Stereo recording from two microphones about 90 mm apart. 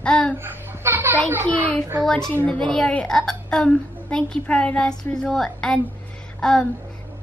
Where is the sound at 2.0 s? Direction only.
5° left (ahead or behind).